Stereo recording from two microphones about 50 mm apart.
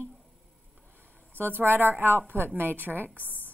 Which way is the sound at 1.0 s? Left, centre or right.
Left.